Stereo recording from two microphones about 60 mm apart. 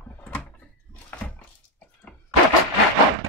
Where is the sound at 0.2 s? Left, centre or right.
Left.